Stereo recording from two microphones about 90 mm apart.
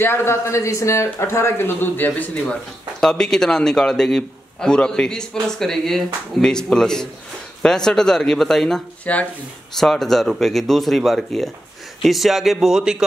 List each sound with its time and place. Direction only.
0.0 s a man's voice: 25° left (ahead or behind); by 8.8 s 5° left (ahead or behind)
9.0 s speech: 15° left (ahead or behind)
9.8 s speech: 5° left (ahead or behind)